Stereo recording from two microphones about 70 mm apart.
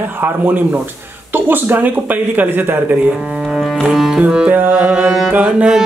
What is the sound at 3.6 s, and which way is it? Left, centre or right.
Cello, centre.